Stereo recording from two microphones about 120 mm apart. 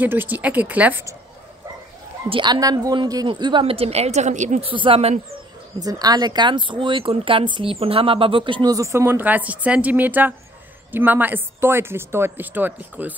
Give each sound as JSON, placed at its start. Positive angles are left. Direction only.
{"t": 0.0, "sound": "speech", "side_deg": -15}
{"t": 2.2, "sound": "speech", "side_deg": -50}
{"t": 2.5, "sound": "speech", "side_deg": -30}
{"t": 4.6, "sound": "speech", "side_deg": -50}
{"t": 5.8, "sound": "speech", "side_deg": -30}
{"t": 8.7, "sound": "speech", "side_deg": -25}